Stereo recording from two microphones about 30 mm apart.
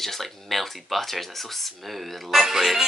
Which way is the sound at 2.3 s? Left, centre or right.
Centre.